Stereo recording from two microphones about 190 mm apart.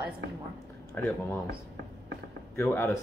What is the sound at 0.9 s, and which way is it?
Speech, 10° left (ahead or behind).